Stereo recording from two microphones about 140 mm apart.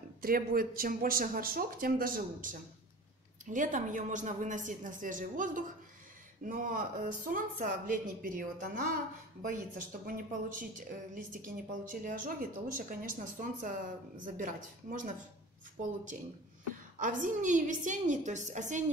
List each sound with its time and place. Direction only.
0.2 s speech: 90° right
3.4 s speech: 65° right (ahead or behind); by 12.8 s 85° right
13.4 s speech: 70° right (ahead or behind)
17.0 s a woman's voice: 65° right (ahead or behind)